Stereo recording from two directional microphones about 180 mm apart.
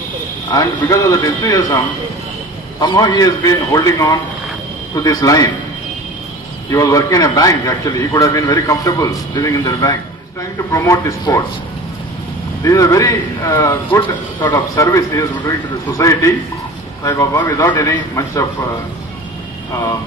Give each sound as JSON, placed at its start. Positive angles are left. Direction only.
{"t": 0.5, "sound": "a man's voice", "side_deg": 20}
{"t": 2.8, "sound": "a man's voice", "side_deg": 20}
{"t": 6.7, "sound": "a man's voice", "side_deg": 15}
{"t": 12.6, "sound": "a man's voice", "side_deg": 15}